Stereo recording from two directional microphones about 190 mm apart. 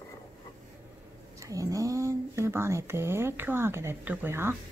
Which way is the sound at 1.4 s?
15° right (ahead or behind).